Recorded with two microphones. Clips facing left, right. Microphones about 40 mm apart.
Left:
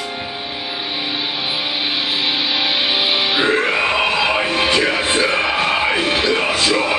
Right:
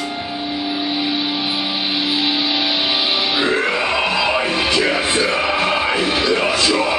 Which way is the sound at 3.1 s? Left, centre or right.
Left.